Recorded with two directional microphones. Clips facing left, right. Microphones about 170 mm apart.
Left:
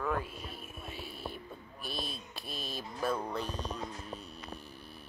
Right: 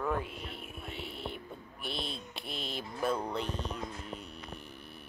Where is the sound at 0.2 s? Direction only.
20° right (ahead or behind).